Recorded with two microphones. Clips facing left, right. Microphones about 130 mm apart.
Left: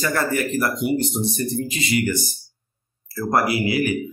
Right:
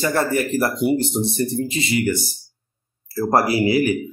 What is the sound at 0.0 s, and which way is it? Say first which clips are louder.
Speech: right 2 dB; 25° right (ahead or behind).